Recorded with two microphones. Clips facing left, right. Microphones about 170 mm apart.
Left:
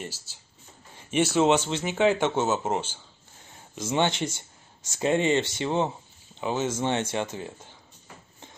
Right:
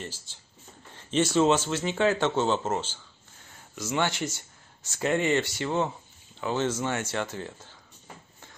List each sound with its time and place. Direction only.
0.0 s speech: 10° left (ahead or behind)
6.8 s speech: 25° left (ahead or behind)